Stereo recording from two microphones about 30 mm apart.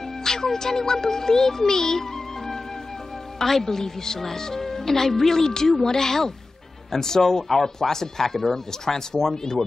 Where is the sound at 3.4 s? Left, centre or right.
Centre.